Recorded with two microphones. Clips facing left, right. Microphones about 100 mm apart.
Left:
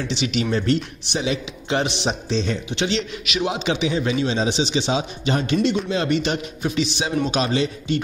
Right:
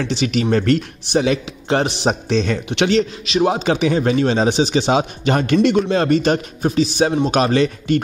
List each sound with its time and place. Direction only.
0.1 s a man's voice: 45° right (ahead or behind)
2.2 s speech: 65° right (ahead or behind)
2.9 s a man's voice: 40° right (ahead or behind)